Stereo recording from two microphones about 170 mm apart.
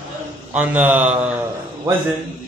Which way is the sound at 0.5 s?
10° right (ahead or behind).